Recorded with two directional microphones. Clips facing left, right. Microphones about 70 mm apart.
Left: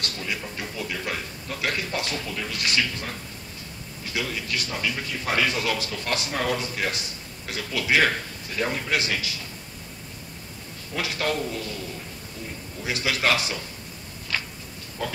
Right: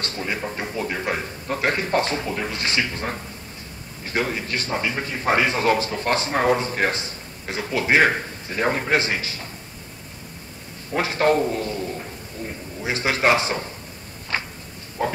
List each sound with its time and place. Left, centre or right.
0.0 s a man's voice: right
10.9 s a man's voice: right
14.3 s a sound: right
15.0 s a man's voice: right